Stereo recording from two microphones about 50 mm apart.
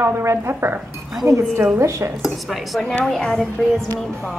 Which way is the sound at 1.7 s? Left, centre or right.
Right.